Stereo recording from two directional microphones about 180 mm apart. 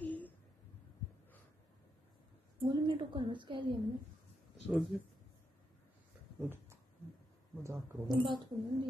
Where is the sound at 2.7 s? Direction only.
25° right (ahead or behind).